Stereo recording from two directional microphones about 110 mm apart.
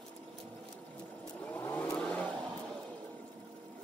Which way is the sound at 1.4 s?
15° left (ahead or behind).